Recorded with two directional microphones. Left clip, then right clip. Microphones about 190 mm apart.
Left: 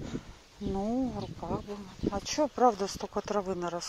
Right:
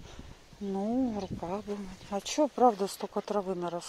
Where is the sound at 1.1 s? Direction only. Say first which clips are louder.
Right 1 dB; 20° right (ahead or behind); by 3.8 s 5° right (ahead or behind).